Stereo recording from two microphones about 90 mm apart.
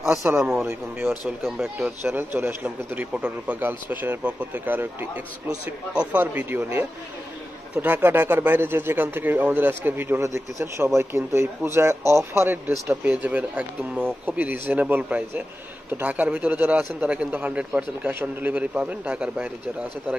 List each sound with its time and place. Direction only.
0.4 s speech: 5° right (ahead or behind)
0.7 s speech: 25° right (ahead or behind)
1.4 s speech: 5° right (ahead or behind)
2.0 s a man's voice: 25° right (ahead or behind)
13.0 s a man's voice: 15° right (ahead or behind)